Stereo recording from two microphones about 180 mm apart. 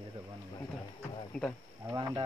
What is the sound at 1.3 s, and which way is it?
Speech, 5° left (ahead or behind).